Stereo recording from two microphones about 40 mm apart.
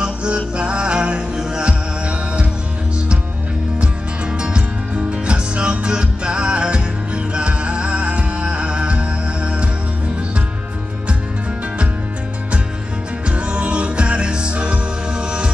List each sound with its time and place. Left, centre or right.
0.0 s music: right
1.6 s music: right
3.8 s music: right
13.3 s music: right